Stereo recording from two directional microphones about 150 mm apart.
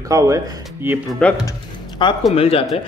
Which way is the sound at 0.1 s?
20° right (ahead or behind).